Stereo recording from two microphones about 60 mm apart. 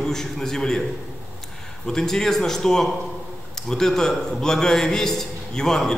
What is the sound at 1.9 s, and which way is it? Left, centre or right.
A man's voice, centre.